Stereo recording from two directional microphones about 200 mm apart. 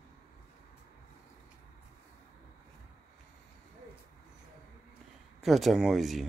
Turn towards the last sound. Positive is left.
turn(degrees=0)  # may be behind; listen again after turning